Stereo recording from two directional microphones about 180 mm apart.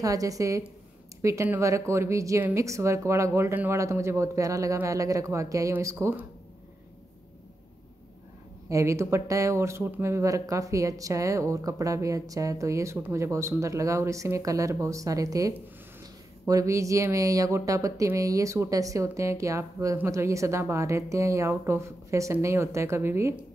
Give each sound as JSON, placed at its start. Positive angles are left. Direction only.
{"t": 0.0, "sound": "a woman's voice", "side_deg": -20}
{"t": 8.6, "sound": "speech", "side_deg": -15}